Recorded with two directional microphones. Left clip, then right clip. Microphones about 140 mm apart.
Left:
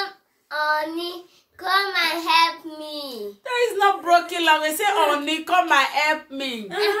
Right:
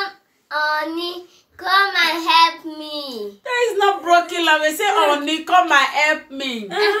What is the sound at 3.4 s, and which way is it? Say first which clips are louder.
Speech: right 2 dB; 15° left (ahead or behind).